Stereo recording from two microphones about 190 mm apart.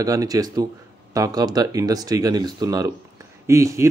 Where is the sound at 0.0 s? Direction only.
20° right (ahead or behind).